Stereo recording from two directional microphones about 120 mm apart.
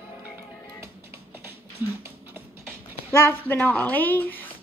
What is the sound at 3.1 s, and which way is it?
Speech, 20° left (ahead or behind).